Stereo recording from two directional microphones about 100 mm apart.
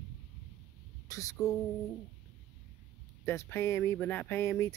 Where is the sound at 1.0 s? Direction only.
35° left (ahead or behind).